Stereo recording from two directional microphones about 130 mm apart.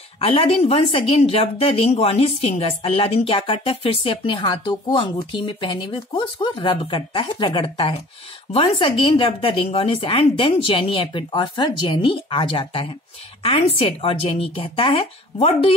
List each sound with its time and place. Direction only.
0.2 s speech: 50° left (ahead or behind)